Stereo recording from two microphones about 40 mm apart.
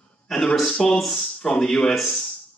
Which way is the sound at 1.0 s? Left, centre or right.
Centre.